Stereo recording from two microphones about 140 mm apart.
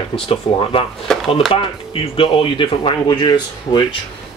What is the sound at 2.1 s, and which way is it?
Speech, 40° left (ahead or behind).